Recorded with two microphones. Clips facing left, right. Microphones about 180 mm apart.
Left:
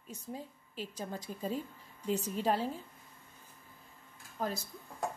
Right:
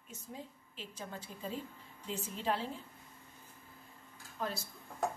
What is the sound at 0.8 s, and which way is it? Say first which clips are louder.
A woman's voice: left 5 dB; 40° left (ahead or behind).